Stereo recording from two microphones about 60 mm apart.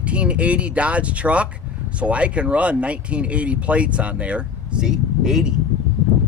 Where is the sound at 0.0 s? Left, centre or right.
Centre.